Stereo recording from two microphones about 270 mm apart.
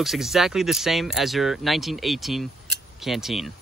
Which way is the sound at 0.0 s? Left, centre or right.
Centre.